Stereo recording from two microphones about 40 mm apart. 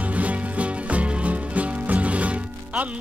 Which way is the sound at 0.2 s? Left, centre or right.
Right.